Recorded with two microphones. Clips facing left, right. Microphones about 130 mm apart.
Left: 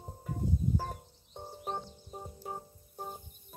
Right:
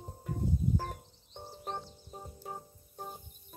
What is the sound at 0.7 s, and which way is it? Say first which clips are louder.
Music: even; 10° left (ahead or behind).